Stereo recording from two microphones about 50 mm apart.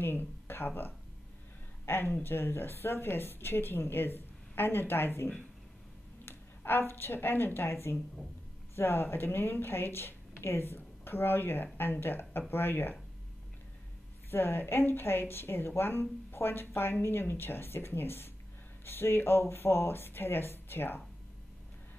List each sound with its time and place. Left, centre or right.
0.0 s speech: left
14.3 s speech: left